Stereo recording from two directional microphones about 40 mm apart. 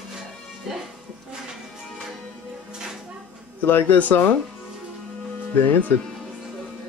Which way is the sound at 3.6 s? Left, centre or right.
Left.